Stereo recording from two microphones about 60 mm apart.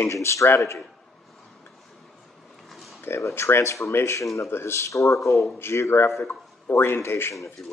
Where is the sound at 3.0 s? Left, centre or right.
Left.